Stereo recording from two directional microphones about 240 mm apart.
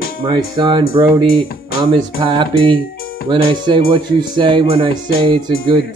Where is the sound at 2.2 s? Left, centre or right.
Centre.